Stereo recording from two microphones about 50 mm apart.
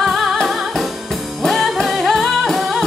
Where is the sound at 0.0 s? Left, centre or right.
Centre.